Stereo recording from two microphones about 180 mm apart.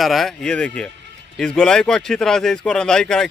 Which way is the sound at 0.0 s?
Centre (ahead or behind).